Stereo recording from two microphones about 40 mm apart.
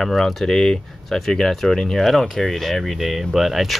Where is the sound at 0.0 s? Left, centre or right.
Centre.